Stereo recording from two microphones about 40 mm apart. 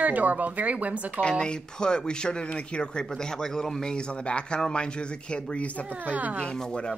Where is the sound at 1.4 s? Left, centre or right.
Centre.